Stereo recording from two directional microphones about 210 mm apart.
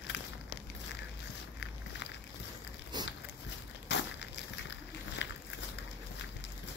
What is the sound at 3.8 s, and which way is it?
Crushing, 55° left (ahead or behind).